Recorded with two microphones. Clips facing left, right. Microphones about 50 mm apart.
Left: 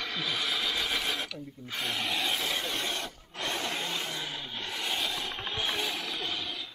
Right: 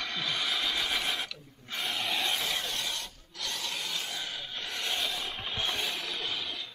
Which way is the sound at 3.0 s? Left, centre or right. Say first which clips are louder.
Left 4 dB; left.